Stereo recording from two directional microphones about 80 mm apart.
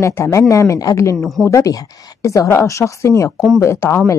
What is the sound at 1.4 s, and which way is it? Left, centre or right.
Speech, left.